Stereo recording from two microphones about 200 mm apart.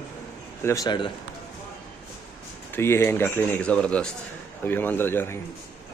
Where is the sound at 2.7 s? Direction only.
10° left (ahead or behind).